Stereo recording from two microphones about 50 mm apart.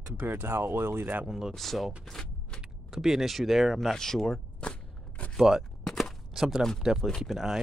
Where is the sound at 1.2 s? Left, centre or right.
Centre.